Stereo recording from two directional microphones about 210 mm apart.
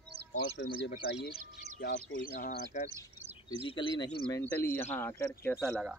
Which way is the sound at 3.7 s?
20° left (ahead or behind).